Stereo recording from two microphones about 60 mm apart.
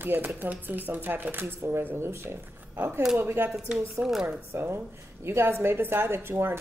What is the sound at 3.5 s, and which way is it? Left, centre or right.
Speech, centre.